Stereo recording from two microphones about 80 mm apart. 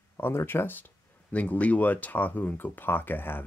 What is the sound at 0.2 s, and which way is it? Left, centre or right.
Speech, left.